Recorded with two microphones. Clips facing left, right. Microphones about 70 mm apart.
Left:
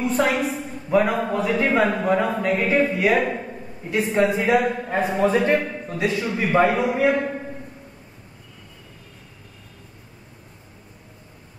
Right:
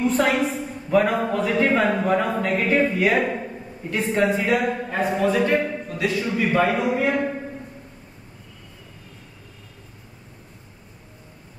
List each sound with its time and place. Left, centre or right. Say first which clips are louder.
0.0 s a woman's voice: right 1 dB; centre